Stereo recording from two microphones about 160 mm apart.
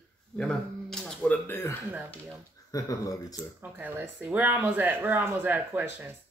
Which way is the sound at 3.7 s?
10° right (ahead or behind).